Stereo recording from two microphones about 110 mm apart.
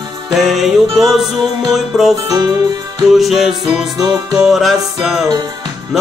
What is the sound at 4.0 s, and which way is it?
Music, 35° right (ahead or behind).